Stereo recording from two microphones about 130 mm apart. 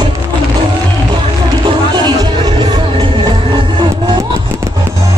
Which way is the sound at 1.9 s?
35° right (ahead or behind).